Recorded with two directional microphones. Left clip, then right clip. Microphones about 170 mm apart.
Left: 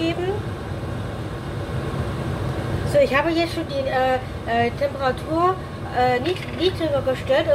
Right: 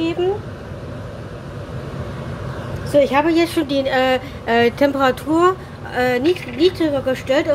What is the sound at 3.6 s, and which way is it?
Speech, 65° right (ahead or behind).